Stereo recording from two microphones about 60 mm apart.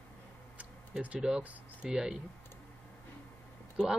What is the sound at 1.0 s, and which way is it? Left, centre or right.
Speech, centre.